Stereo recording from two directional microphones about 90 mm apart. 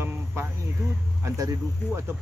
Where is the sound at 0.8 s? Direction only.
35° right (ahead or behind).